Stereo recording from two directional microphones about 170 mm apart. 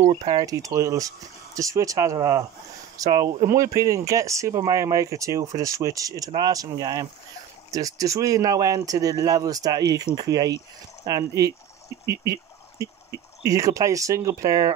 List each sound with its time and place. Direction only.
0.0 s speech: 35° right (ahead or behind)
0.5 s speech: 20° right (ahead or behind)
12.1 s a sound: 20° right (ahead or behind)
13.5 s speech: 20° right (ahead or behind)